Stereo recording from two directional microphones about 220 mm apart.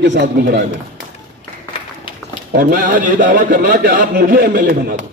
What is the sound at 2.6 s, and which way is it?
A man's voice, 35° right (ahead or behind).